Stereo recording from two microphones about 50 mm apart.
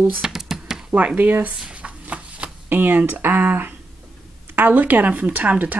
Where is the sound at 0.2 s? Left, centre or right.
Centre.